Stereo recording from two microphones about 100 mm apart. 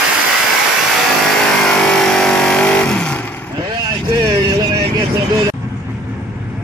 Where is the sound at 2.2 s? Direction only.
10° left (ahead or behind).